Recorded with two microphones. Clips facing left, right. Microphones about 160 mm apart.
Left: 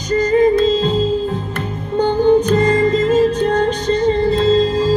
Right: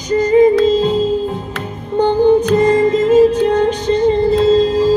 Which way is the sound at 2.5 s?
15° right (ahead or behind).